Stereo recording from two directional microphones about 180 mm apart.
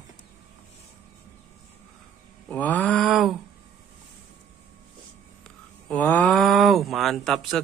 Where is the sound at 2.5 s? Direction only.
10° left (ahead or behind).